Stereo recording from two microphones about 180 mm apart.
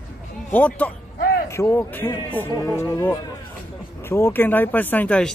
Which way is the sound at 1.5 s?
15° left (ahead or behind).